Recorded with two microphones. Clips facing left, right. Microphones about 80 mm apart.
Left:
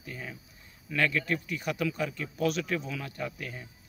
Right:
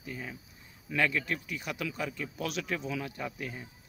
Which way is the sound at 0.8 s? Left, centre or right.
Centre.